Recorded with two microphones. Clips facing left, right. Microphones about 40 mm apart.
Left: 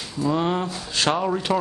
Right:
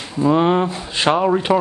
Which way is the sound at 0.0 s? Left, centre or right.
Right.